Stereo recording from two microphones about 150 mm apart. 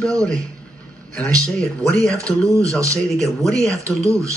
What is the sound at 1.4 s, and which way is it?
Speech, 5° left (ahead or behind).